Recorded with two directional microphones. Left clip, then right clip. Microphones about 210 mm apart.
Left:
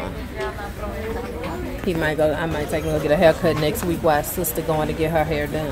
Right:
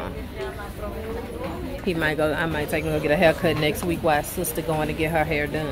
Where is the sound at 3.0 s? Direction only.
5° left (ahead or behind).